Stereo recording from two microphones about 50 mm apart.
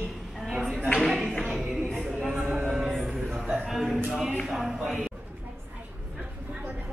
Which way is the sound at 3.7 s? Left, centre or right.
Centre.